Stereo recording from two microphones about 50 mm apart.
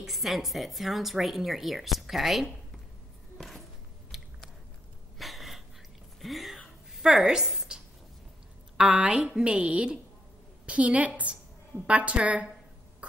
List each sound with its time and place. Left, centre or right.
0.0 s a woman's voice: centre
3.3 s a sound: centre
4.1 s biting: centre
5.2 s gasp: centre
6.2 s a sound: centre
7.0 s a woman's voice: centre
8.7 s a woman's voice: right